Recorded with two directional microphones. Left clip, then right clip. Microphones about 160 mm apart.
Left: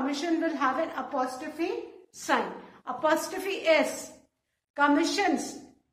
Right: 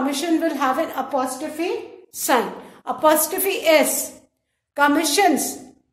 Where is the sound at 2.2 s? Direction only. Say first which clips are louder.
Right 8 dB; 55° right (ahead or behind).